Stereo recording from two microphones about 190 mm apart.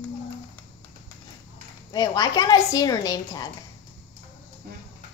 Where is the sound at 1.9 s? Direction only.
20° left (ahead or behind).